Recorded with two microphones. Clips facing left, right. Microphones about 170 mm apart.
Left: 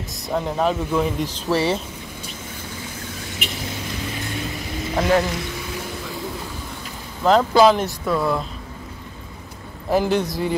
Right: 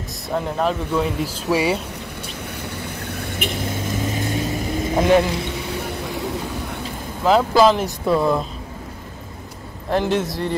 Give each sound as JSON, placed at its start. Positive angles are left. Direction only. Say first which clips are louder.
{"t": 0.3, "sound": "speech", "louder": "even", "side_deg": 0}
{"t": 2.8, "sound": "vehicle", "louder": "right 4 dB", "side_deg": -60}
{"t": 4.9, "sound": "speech", "louder": "right 3 dB", "side_deg": -20}
{"t": 7.2, "sound": "speech", "louder": "even", "side_deg": 0}
{"t": 7.8, "sound": "speech", "louder": "right 3 dB", "side_deg": -25}
{"t": 9.8, "sound": "speech", "louder": "left 1 dB", "side_deg": 0}